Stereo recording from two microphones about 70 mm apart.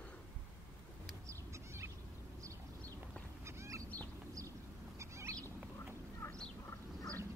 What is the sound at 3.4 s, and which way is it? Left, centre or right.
Goose, right.